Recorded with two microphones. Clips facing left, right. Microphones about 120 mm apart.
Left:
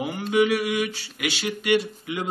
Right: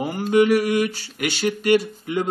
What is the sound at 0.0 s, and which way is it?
Speech, 40° right (ahead or behind).